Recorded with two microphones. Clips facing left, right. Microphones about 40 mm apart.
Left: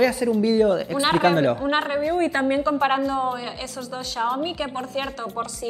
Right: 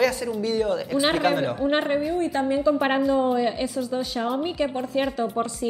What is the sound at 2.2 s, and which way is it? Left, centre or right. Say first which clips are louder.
Speech: left 2 dB; left.